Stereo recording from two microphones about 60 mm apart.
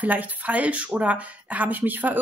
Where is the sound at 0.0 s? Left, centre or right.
Right.